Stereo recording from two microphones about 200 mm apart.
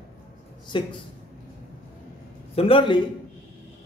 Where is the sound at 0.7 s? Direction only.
25° left (ahead or behind).